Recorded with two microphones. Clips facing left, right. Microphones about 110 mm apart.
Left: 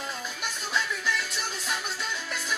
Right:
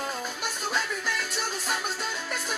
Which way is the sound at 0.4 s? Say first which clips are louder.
Left 1 dB; 45° right (ahead or behind).